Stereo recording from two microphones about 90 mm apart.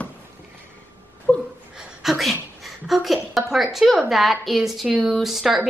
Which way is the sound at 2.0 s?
Centre (ahead or behind).